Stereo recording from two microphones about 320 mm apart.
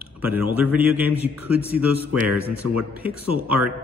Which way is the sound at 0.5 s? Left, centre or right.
Centre.